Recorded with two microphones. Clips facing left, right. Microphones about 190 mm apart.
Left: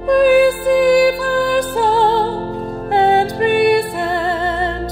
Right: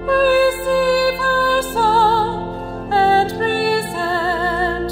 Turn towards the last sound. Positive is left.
turn(degrees=20)  # may be behind; listen again after turning